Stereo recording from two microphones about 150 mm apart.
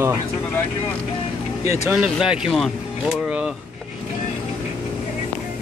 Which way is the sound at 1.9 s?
5° right (ahead or behind).